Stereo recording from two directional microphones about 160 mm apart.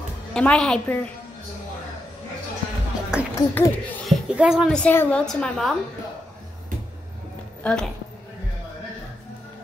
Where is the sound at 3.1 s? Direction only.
5° right (ahead or behind).